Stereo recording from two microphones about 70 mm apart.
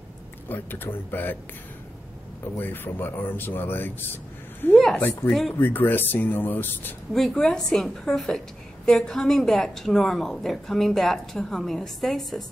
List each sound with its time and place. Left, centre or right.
0.5 s speech: left
2.5 s speech: left
5.3 s a woman's voice: centre
5.6 s speech: left
7.2 s a woman's voice: centre